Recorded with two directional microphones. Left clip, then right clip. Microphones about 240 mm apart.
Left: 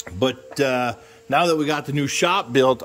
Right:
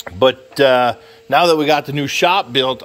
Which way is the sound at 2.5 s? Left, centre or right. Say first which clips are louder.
Even; left.